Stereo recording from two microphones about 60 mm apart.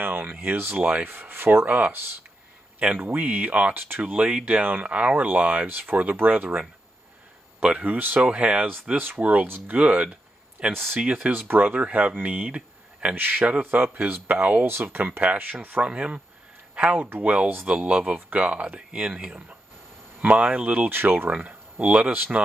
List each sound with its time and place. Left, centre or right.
0.0 s speech: right
3.2 s speech: right
5.7 s speech: right
7.6 s speech: right
10.7 s speech: right
13.1 s speech: right
14.7 s speech: right
15.0 s speech: right
17.5 s speech: right
17.7 s speech: right
20.9 s speech: right
21.3 s speech: right